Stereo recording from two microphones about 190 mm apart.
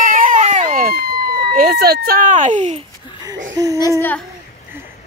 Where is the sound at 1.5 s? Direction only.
55° right (ahead or behind).